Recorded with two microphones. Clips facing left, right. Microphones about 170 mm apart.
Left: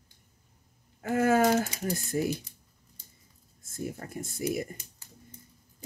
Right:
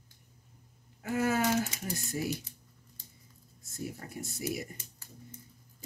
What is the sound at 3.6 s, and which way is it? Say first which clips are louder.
Speech: left 4 dB; 50° left (ahead or behind).